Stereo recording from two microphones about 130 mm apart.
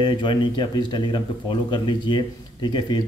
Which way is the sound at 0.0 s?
35° left (ahead or behind).